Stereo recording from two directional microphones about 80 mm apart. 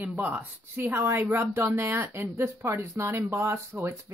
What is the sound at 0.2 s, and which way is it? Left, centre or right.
Speech, right.